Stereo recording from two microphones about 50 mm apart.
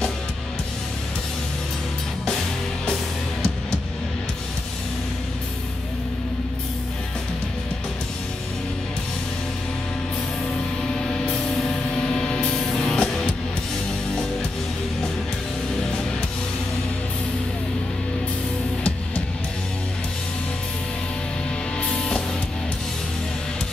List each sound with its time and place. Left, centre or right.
11.0 s music: centre
15.7 s music: centre
21.8 s music: centre